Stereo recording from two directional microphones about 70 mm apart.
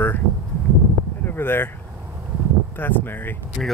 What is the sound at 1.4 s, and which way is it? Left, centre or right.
Speech, left.